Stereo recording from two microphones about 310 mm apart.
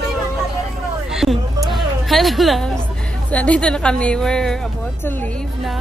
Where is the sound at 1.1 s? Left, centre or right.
Centre.